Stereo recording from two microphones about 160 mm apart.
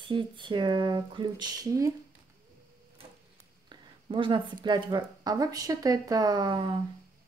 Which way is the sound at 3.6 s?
30° right (ahead or behind).